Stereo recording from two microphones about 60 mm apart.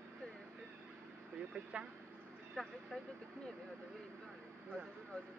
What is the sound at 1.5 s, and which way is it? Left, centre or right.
Speech, centre.